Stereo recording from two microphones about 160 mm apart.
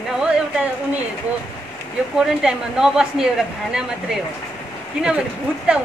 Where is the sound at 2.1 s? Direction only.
5° right (ahead or behind).